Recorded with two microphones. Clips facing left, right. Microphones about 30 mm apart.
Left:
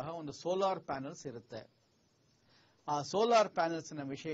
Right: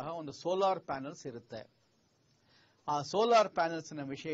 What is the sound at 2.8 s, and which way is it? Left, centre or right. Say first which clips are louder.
A man's voice: right 2 dB; centre.